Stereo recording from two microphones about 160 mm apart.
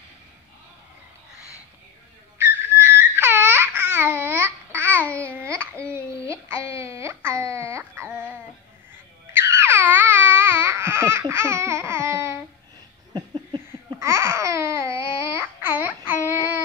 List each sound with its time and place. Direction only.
2.3 s babbling: 15° right (ahead or behind)
5.0 s babbling: 10° left (ahead or behind)
5.9 s a sound: 20° right (ahead or behind)
9.3 s babbling: 15° right (ahead or behind)
13.1 s a sound: 30° right (ahead or behind)
13.9 s babbling: 15° right (ahead or behind)
16.1 s child singing: 10° right (ahead or behind)